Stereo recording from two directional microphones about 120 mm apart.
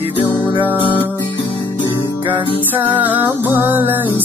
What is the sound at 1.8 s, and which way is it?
Music, 20° left (ahead or behind).